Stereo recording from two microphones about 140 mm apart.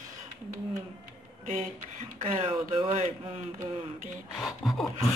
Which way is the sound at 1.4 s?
65° right (ahead or behind).